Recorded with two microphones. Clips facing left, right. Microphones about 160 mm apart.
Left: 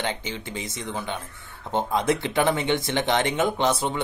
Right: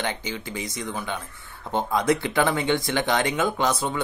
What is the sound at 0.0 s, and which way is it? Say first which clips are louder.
Speech: even; 25° left (ahead or behind).